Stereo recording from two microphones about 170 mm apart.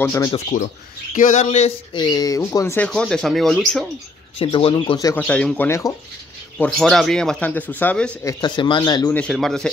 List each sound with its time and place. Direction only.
0.0 s speech: 20° left (ahead or behind)
0.5 s speech: 55° left (ahead or behind)
2.0 s speech: 25° left (ahead or behind)
2.9 s speech: 5° left (ahead or behind)
4.4 s speech: 30° left (ahead or behind)
5.2 s speech: 5° left (ahead or behind)
6.6 s speech: centre (ahead or behind)
8.3 s speech: 25° left (ahead or behind)
9.1 s speech: 5° left (ahead or behind)